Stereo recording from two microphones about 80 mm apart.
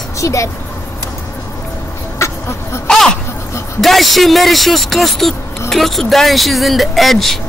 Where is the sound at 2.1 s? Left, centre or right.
Left.